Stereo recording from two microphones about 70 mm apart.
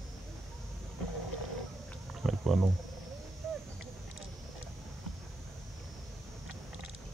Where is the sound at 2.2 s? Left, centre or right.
Centre.